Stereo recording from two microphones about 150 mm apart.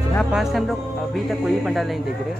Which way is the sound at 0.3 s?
Centre (ahead or behind).